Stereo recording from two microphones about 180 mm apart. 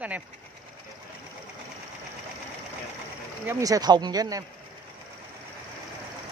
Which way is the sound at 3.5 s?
20° right (ahead or behind).